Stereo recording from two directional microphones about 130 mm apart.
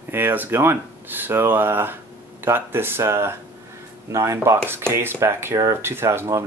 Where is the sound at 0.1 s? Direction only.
15° right (ahead or behind).